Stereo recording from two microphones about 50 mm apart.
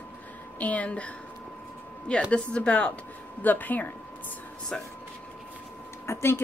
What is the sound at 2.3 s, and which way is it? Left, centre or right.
Speech, left.